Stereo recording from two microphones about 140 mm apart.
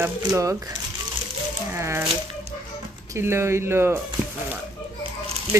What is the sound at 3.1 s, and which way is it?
Speech, 20° right (ahead or behind).